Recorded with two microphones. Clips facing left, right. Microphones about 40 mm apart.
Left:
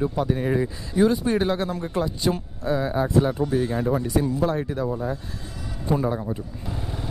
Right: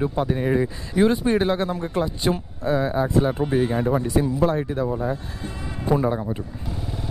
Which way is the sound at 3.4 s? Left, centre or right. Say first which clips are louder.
Right 2 dB; right.